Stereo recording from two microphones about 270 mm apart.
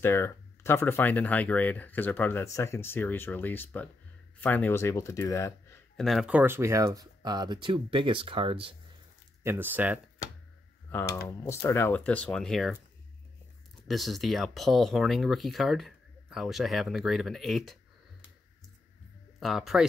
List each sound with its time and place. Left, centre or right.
0.0 s speech: centre
9.4 s speech: centre
10.9 s speech: centre
13.8 s speech: centre
19.4 s speech: centre